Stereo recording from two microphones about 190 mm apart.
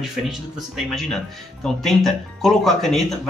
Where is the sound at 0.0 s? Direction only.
Centre (ahead or behind).